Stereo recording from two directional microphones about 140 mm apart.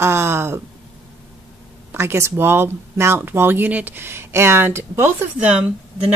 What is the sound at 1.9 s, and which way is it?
Speech, 20° right (ahead or behind).